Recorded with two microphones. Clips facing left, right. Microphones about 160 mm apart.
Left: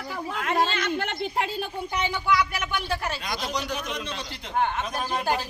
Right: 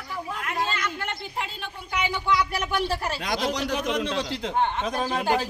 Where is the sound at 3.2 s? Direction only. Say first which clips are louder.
Right 4 dB; 90° right.